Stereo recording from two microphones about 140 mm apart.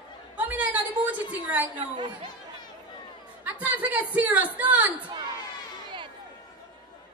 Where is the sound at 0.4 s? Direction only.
10° right (ahead or behind).